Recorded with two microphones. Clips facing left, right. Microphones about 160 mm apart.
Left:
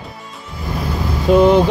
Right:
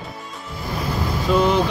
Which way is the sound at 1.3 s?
50° left (ahead or behind).